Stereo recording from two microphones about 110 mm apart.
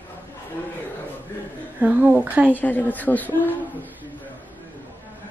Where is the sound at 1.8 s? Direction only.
15° right (ahead or behind).